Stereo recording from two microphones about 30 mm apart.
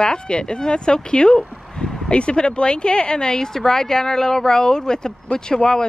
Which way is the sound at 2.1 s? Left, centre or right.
Left.